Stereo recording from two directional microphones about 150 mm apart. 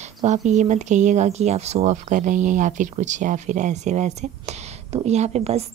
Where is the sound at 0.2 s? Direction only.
50° right (ahead or behind).